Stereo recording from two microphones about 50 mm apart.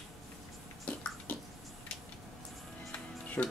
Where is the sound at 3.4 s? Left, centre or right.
Left.